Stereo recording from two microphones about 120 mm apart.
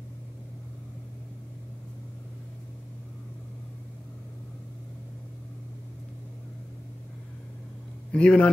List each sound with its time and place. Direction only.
8.1 s a man's voice: 10° left (ahead or behind)